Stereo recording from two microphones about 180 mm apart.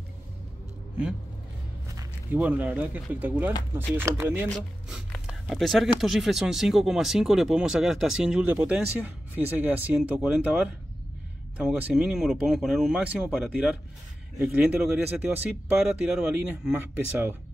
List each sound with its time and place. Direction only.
2.3 s speech: 10° right (ahead or behind)